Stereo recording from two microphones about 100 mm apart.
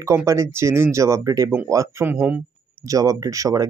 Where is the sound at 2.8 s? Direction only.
35° right (ahead or behind).